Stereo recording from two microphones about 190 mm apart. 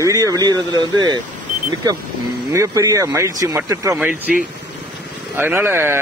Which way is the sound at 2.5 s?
15° right (ahead or behind).